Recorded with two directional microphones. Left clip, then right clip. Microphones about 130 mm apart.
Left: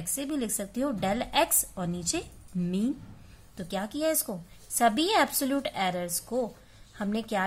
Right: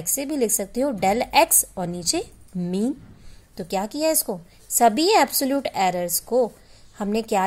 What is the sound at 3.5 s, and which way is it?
A woman's voice, 40° right (ahead or behind).